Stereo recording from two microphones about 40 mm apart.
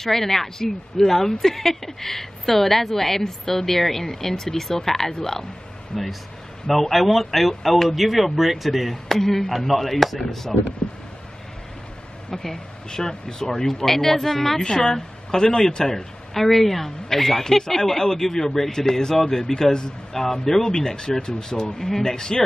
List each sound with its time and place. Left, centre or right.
0.0 s speech: centre
12.3 s speech: centre